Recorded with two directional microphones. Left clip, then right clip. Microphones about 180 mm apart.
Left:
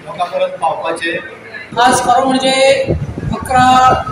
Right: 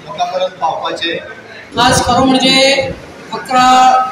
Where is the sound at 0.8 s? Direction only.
5° right (ahead or behind).